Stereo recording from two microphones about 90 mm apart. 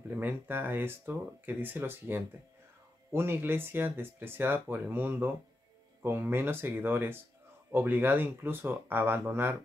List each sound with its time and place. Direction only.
0.1 s speech: 20° right (ahead or behind)